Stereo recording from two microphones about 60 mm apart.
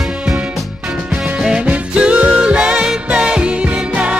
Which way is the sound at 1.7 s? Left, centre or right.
Right.